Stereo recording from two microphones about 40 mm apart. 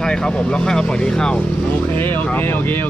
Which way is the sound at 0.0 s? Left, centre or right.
Centre.